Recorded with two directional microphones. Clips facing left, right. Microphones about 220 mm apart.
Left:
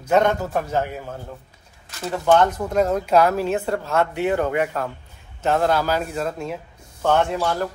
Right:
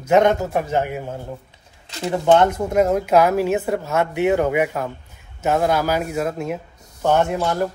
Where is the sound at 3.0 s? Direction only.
10° right (ahead or behind).